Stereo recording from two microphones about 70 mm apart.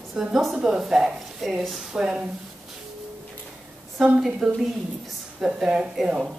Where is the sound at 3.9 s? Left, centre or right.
Centre.